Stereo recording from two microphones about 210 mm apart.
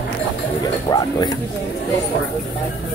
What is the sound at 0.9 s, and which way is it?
Speech, 20° left (ahead or behind).